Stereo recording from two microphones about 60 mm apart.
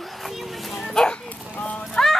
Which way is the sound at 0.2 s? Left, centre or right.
Centre.